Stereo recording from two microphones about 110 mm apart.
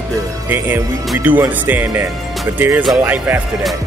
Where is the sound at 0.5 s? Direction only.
15° right (ahead or behind).